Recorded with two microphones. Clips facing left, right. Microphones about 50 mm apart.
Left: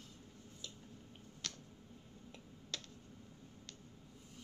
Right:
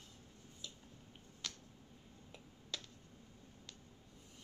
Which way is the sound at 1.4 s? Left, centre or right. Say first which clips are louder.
Even; centre.